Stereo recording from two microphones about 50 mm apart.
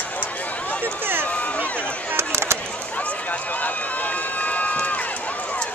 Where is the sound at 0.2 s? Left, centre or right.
Left.